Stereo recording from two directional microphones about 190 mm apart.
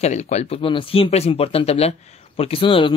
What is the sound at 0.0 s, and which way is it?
Speech, 35° left (ahead or behind).